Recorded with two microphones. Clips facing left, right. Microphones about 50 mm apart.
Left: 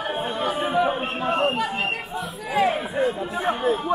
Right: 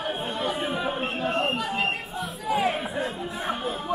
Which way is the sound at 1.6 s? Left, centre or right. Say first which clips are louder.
Left 2 dB; centre.